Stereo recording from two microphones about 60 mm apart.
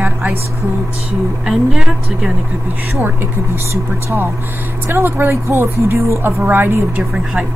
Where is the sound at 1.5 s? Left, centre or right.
Centre.